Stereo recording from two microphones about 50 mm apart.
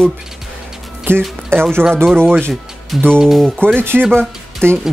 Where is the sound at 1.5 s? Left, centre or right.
Right.